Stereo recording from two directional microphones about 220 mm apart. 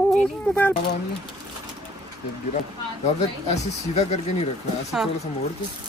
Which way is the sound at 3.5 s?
30° left (ahead or behind).